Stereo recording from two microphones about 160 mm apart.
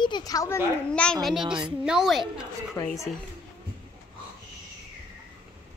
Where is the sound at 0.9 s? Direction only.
5° left (ahead or behind).